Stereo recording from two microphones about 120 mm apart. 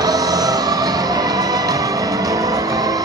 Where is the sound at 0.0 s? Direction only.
30° right (ahead or behind).